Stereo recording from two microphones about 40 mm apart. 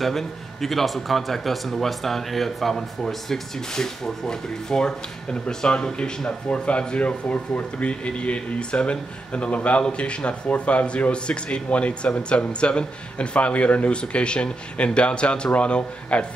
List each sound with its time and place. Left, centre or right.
0.0 s a man's voice: centre; by 16.3 s left